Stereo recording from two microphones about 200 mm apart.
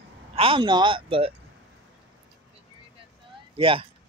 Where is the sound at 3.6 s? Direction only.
25° right (ahead or behind).